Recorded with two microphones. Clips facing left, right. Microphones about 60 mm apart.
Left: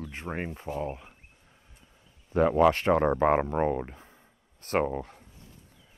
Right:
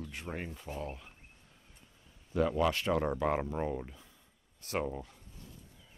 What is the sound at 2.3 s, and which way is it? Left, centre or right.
Speech, left.